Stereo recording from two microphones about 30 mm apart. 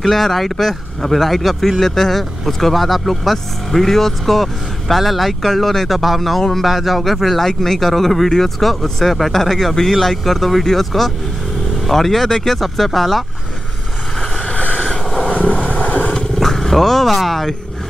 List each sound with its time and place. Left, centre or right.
0.0 s speech: centre
15.6 s vehicle: left
16.3 s speech: centre